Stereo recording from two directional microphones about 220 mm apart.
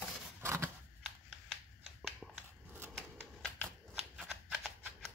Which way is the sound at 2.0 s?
Centre (ahead or behind).